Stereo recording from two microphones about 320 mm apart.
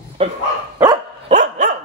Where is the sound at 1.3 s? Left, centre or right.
Right.